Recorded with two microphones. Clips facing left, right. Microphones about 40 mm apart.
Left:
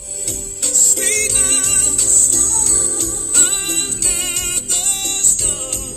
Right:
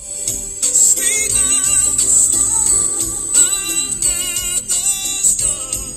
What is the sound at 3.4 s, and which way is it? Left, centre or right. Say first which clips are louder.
Jingle bell: left 1 dB; left.